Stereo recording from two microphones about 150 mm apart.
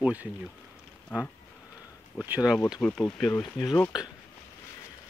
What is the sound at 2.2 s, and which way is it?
Speech, 5° right (ahead or behind).